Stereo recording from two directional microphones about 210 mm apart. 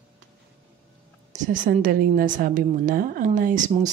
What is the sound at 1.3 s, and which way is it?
Speech, 40° right (ahead or behind).